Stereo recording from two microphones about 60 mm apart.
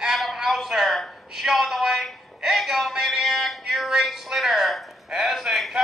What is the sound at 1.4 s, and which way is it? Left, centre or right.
Music, centre.